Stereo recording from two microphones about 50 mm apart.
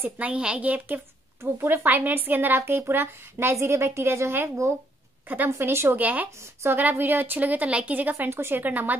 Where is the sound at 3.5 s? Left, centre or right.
Right.